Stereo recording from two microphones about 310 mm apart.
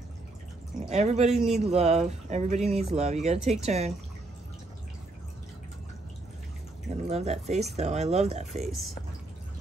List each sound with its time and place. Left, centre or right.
0.8 s speech: right
1.3 s speech: centre
1.6 s speech: right
7.1 s speech: right